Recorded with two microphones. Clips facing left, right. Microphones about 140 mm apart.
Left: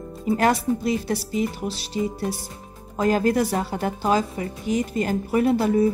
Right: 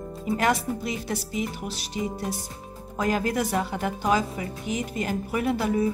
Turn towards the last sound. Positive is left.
turn(degrees=35)  # may be behind; listen again after turning